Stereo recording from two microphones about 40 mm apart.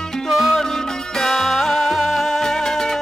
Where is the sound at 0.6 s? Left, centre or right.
Centre.